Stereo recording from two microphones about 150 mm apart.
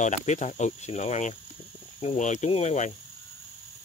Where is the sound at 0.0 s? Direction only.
50° left (ahead or behind).